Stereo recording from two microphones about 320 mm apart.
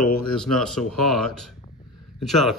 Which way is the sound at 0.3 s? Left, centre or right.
Centre.